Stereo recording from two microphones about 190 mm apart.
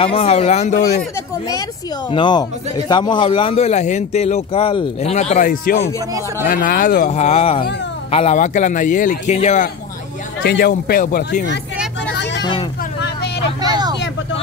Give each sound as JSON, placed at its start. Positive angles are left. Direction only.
{"t": 0.0, "sound": "a man's voice", "side_deg": 30}
{"t": 2.0, "sound": "a man's voice", "side_deg": 25}
{"t": 10.4, "sound": "speech", "side_deg": 55}
{"t": 12.4, "sound": "vehicle", "side_deg": 25}
{"t": 13.6, "sound": "vehicle", "side_deg": -20}